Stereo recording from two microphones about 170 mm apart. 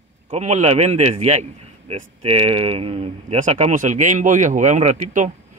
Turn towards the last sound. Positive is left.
turn(degrees=-45)  # may be behind; listen again after turning